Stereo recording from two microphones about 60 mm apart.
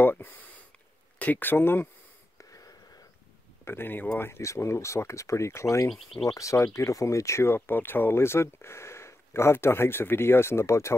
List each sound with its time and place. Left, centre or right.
0.0 s speech: left
2.3 s wheeze: left
3.6 s speech: left
4.4 s speech: left
5.9 s speech: centre
6.2 s speech: left